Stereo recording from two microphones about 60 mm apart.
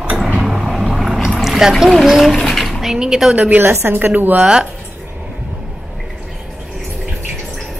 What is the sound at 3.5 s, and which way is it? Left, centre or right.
Speech, right.